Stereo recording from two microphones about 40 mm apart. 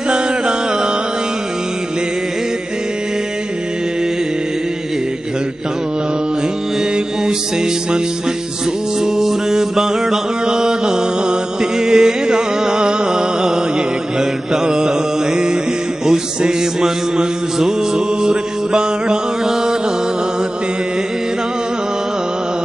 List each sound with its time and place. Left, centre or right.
9.0 s mantra: centre
11.8 s music: centre
14.5 s mantra: centre